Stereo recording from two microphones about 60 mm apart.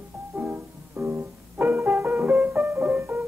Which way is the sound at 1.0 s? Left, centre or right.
Right.